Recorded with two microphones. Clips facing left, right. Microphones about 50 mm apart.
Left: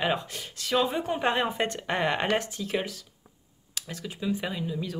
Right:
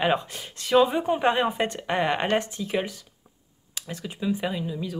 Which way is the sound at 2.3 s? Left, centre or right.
Right.